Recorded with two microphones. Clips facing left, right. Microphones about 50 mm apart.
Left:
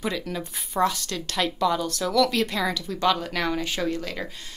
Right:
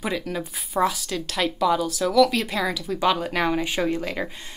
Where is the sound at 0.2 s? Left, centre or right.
Centre.